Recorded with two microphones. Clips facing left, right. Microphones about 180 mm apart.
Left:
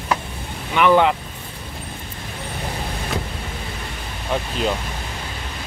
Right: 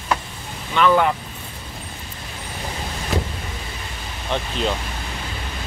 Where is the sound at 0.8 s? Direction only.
15° left (ahead or behind).